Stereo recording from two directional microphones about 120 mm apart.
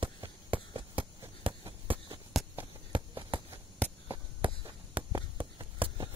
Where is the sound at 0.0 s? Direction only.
45° right (ahead or behind).